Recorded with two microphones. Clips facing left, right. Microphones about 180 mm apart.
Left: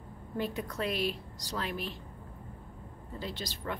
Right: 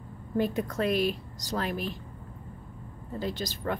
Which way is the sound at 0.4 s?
45° right (ahead or behind).